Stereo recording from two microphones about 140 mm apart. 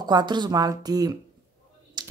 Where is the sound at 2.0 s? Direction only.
30° right (ahead or behind).